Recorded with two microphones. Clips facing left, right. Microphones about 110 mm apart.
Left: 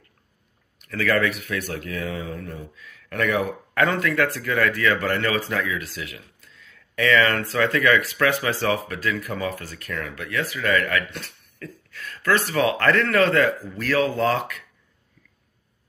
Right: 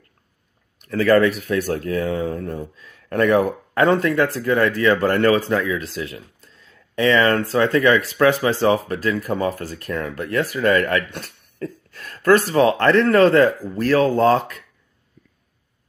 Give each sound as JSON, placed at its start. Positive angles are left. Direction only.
{"t": 0.7, "sound": "speech", "side_deg": -30}